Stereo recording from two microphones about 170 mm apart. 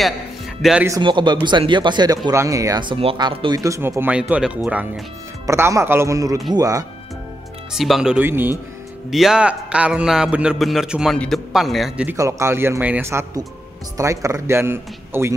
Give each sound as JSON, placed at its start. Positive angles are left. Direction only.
{"t": 0.6, "sound": "speech", "side_deg": -5}
{"t": 0.8, "sound": "speech", "side_deg": -25}
{"t": 7.7, "sound": "a man's voice", "side_deg": 0}
{"t": 12.1, "sound": "speech", "side_deg": -15}